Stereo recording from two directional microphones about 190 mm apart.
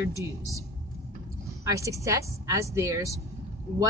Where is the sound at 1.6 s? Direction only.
15° right (ahead or behind).